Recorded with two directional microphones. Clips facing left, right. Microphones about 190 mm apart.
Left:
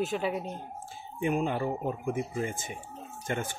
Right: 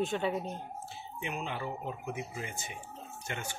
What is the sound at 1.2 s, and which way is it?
Speech, 45° left (ahead or behind).